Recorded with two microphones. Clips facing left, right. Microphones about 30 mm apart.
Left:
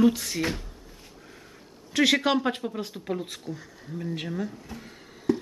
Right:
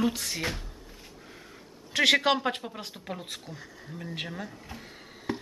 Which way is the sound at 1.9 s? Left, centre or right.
Centre.